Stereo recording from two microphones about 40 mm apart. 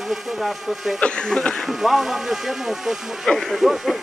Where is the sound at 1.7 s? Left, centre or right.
Centre.